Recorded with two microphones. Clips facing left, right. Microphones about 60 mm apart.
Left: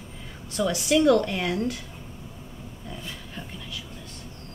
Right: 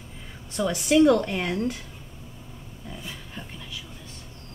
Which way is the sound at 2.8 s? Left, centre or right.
Centre.